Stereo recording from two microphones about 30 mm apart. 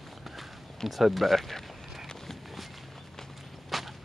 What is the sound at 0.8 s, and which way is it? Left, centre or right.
Speech, centre.